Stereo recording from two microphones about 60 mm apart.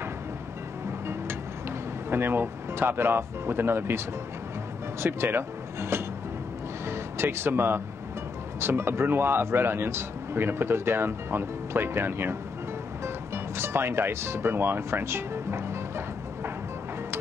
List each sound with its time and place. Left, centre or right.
2.0 s a man's voice: right
5.0 s speech: right
6.9 s music: right
8.5 s a man's voice: right